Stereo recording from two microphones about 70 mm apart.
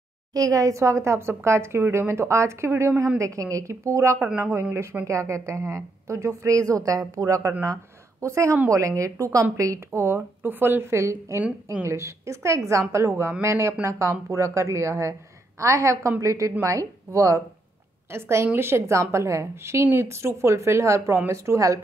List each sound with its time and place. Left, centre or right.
0.3 s a woman's voice: right
3.2 s a woman's voice: right
4.4 s a woman's voice: right
5.0 s a woman's voice: right
9.8 s a woman's voice: right
18.1 s a woman's voice: right